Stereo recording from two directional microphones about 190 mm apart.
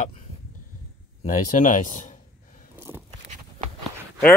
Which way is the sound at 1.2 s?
40° left (ahead or behind).